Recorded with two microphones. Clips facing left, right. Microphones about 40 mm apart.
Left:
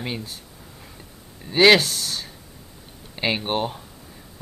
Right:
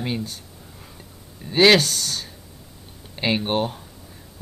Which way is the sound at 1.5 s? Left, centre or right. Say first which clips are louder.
Even; centre.